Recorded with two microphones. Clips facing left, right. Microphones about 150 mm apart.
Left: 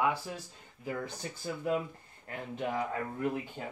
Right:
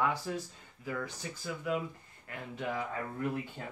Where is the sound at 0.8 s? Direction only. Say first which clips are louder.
Left 1 dB; 30° left (ahead or behind).